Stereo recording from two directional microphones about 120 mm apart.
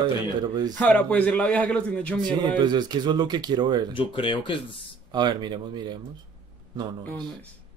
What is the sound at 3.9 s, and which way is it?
Speech, 45° left (ahead or behind).